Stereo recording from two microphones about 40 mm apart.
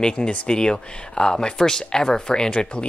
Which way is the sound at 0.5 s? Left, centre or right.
Left.